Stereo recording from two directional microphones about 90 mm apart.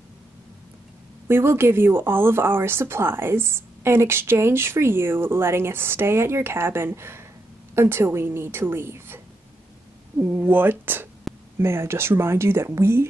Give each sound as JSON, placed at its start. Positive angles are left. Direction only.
{"t": 1.2, "sound": "speech", "side_deg": -25}